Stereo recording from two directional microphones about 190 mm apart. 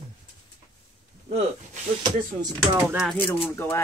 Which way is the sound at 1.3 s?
40° right (ahead or behind).